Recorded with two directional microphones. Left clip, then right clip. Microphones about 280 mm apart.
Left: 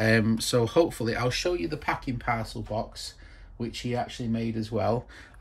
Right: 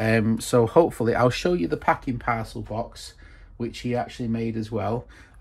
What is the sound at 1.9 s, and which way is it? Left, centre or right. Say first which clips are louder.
Speech: right 5 dB; centre.